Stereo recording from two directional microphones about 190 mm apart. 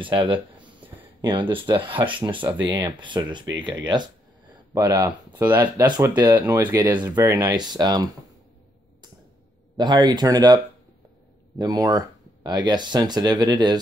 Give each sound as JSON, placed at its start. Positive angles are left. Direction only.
{"t": 0.0, "sound": "speech", "side_deg": -25}
{"t": 3.8, "sound": "a sound", "side_deg": -25}
{"t": 4.8, "sound": "speech", "side_deg": -10}
{"t": 9.8, "sound": "speech", "side_deg": -25}